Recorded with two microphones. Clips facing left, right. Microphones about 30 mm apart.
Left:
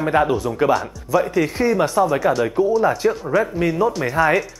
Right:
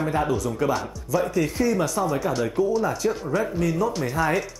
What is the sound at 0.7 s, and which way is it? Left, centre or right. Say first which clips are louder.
Speech: left 6 dB; centre.